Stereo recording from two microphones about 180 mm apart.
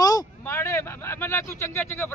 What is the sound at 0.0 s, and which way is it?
Speech, 20° left (ahead or behind).